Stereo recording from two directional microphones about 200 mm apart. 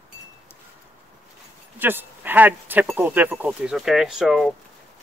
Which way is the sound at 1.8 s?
10° right (ahead or behind).